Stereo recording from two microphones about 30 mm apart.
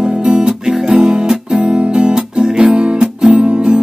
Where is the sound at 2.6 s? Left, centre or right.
Right.